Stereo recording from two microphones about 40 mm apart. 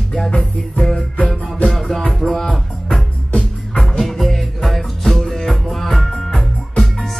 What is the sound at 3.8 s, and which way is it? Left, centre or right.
Music, centre.